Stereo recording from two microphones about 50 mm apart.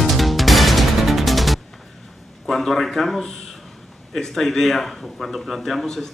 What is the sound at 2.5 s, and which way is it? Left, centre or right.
Speech, centre.